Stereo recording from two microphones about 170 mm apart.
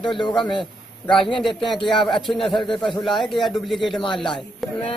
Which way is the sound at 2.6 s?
Centre (ahead or behind).